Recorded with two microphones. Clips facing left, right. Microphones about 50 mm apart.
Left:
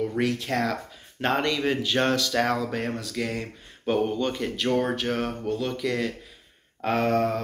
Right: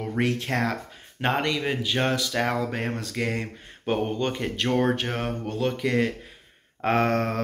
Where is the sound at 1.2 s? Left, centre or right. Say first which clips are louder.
Left 1 dB; centre.